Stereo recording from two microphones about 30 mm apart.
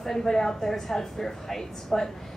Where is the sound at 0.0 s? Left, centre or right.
Centre.